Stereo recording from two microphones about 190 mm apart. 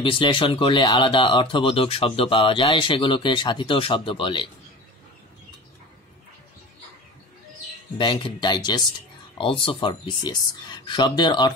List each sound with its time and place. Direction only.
0.0 s speech: 25° left (ahead or behind)
8.0 s speech: 25° left (ahead or behind)